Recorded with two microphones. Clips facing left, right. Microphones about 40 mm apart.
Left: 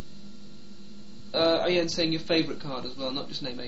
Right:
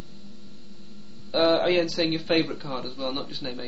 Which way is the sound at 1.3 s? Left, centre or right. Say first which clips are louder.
Right 3 dB; centre.